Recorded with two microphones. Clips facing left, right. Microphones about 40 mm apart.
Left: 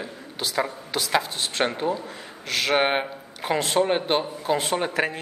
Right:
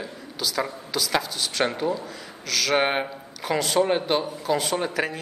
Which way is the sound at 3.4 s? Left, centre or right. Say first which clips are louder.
Even; left.